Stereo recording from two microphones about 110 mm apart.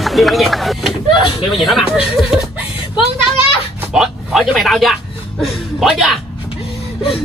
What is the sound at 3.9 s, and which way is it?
A man's voice, centre (ahead or behind).